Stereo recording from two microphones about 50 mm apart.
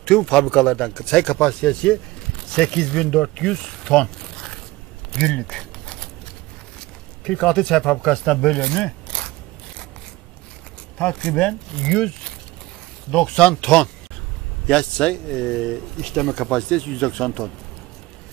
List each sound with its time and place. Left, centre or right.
0.0 s speech: centre
5.1 s a sound: centre
7.2 s speech: centre
11.0 s speech: centre